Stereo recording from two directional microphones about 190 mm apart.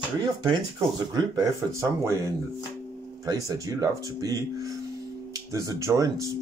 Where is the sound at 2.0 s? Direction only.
15° right (ahead or behind).